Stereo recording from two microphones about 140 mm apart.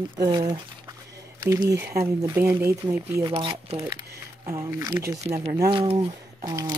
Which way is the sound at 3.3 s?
35° right (ahead or behind).